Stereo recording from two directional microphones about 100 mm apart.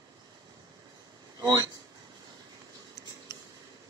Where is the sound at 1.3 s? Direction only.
35° right (ahead or behind).